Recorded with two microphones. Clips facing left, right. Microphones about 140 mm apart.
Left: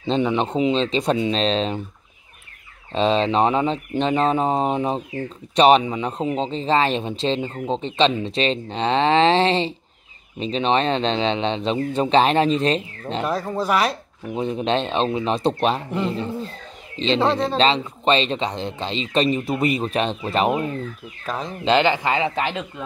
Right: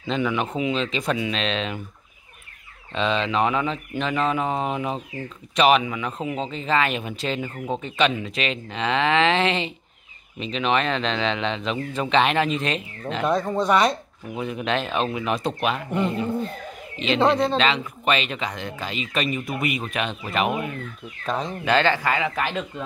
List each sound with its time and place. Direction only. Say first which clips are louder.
0.0 s speech: left 4 dB; 30° left (ahead or behind)
2.9 s speech: left 5 dB; 35° left (ahead or behind)
13.2 s speech: right 2 dB; 5° left (ahead or behind)
14.3 s speech: left 4 dB; 30° left (ahead or behind)
15.9 s speech: even; centre (ahead or behind)
16.9 s speech: even; 30° left (ahead or behind)
21.3 s speech: right 1 dB; centre (ahead or behind)
21.6 s speech: left 3 dB; 20° left (ahead or behind)